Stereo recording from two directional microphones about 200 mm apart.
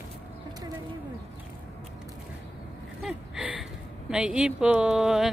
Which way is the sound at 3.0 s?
5° right (ahead or behind).